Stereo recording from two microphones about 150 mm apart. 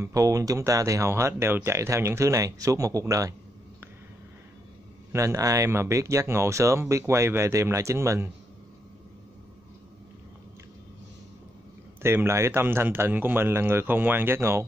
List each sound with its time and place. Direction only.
0.0 s speech: 20° right (ahead or behind)
5.1 s speech: 20° right (ahead or behind)
12.0 s a man's voice: 15° right (ahead or behind)